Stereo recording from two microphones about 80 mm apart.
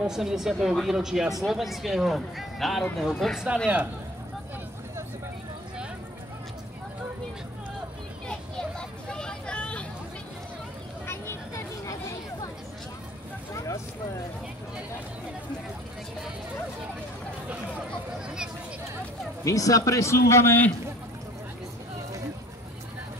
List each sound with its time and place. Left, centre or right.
0.0 s speech: centre
3.6 s speech: right
8.3 s vehicle: centre
11.1 s vehicle: left
19.4 s speech: left